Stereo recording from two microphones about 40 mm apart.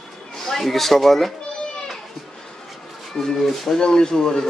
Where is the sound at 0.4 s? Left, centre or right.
Centre.